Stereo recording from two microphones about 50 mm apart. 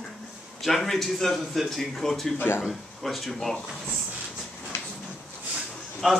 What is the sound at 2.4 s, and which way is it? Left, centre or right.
Speech, left.